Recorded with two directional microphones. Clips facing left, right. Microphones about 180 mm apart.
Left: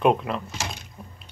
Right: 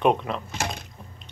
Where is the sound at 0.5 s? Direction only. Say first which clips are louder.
Right 3 dB; 55° right (ahead or behind).